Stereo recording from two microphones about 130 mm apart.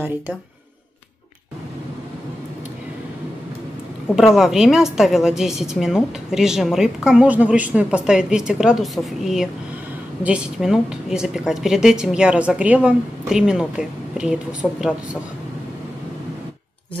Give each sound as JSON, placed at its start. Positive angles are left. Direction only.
{"t": 4.1, "sound": "a woman's voice", "side_deg": -5}